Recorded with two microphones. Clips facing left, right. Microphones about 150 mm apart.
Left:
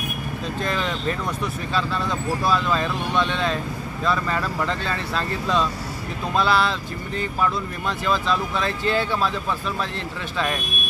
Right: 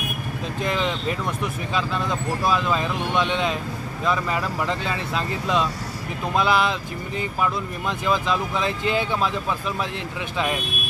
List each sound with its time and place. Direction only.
0.6 s speech: 15° right (ahead or behind)
10.3 s speech: 10° right (ahead or behind)